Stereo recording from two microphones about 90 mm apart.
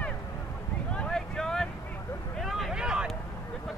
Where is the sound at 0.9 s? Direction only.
10° left (ahead or behind).